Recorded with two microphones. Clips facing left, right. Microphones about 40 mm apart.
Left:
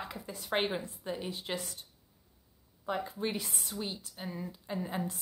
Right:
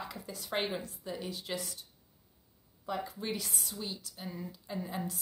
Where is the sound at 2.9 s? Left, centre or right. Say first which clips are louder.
Left 2 dB; left.